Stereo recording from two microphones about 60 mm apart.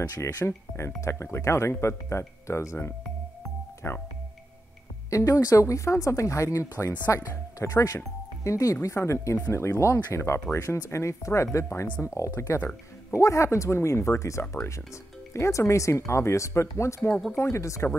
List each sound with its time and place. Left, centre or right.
0.5 s speech: left
3.8 s speech: left
5.1 s speech: left
12.5 s speech: left
13.2 s speech: left